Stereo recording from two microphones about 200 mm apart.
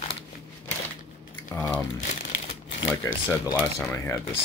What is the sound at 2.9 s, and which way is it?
Speech, 15° left (ahead or behind).